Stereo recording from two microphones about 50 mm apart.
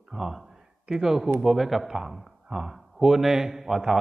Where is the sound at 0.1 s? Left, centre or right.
Centre.